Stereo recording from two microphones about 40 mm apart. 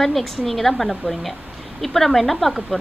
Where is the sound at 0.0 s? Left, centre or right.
Centre.